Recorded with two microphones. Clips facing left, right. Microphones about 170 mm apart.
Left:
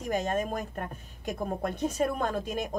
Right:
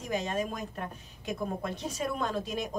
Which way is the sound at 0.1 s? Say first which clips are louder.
Left 3 dB; 50° left (ahead or behind).